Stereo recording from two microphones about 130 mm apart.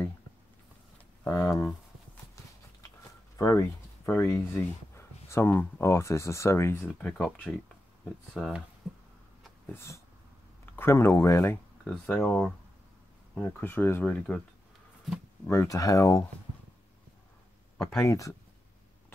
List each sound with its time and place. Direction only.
1.2 s speech: 20° left (ahead or behind)
3.3 s speech: 25° left (ahead or behind); by 8.5 s 5° left (ahead or behind)
9.7 s dog: 20° left (ahead or behind)
10.6 s speech: 20° left (ahead or behind)
11.8 s speech: 10° left (ahead or behind)
15.4 s speech: 20° left (ahead or behind)
18.0 s speech: 25° left (ahead or behind)